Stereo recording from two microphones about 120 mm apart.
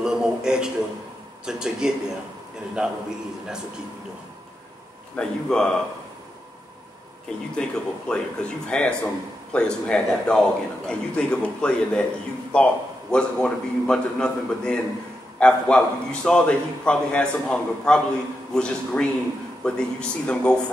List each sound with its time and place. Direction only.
0.0 s a sound: 5° right (ahead or behind)
1.4 s a man's voice: 5° right (ahead or behind)
5.1 s speech: 5° left (ahead or behind)
7.5 s speech: 10° left (ahead or behind)